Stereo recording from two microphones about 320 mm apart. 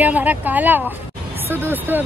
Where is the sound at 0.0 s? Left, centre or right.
Centre.